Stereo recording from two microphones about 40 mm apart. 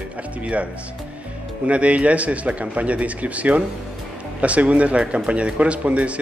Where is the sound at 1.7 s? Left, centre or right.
Right.